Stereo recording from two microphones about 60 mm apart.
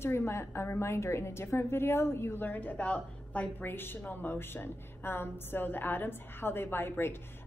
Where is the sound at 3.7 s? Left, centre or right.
Left.